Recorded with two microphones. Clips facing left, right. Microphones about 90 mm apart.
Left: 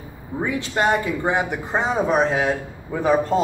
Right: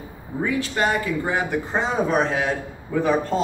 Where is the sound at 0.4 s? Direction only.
20° left (ahead or behind).